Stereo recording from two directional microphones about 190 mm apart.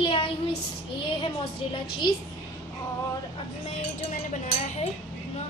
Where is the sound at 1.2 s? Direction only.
25° left (ahead or behind).